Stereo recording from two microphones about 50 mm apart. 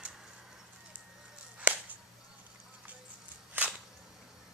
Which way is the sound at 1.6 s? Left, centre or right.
Right.